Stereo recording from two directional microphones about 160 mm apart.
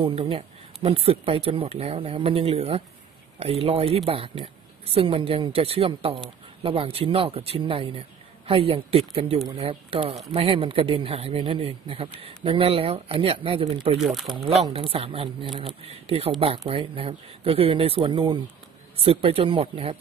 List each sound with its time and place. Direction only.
0.0 s speech: 35° right (ahead or behind)
13.9 s speech: centre (ahead or behind)
14.3 s speech: 40° right (ahead or behind)